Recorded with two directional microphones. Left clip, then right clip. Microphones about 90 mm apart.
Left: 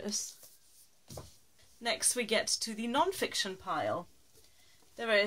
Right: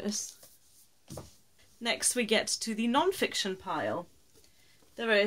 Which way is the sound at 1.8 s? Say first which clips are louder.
Right 2 dB; 25° right (ahead or behind).